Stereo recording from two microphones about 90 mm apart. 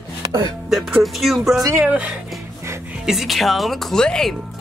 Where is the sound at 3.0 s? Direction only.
5° right (ahead or behind).